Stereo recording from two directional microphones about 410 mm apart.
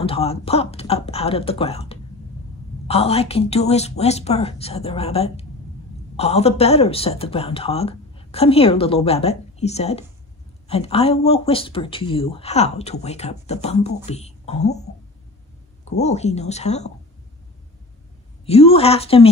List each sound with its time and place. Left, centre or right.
0.0 s speech: centre
18.4 s speech: centre